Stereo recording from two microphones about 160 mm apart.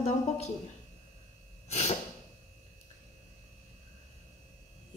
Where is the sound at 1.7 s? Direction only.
45° left (ahead or behind).